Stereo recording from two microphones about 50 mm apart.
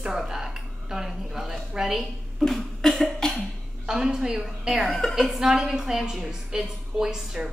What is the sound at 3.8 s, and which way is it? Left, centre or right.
A woman's voice, centre.